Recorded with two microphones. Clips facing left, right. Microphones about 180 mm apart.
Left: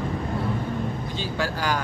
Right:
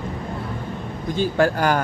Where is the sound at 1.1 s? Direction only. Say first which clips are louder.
Right 14 dB; 50° right (ahead or behind).